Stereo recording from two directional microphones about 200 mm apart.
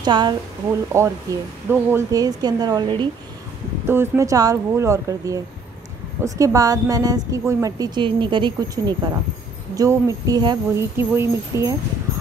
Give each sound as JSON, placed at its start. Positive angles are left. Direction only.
{"t": 0.0, "sound": "a woman's voice", "side_deg": -20}
{"t": 3.8, "sound": "a woman's voice", "side_deg": -10}